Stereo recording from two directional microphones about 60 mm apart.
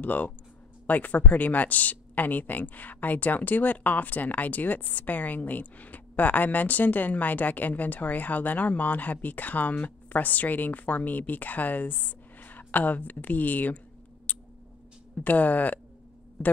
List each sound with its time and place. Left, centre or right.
0.0 s speech: left
14.3 s a sound: left
15.1 s speech: left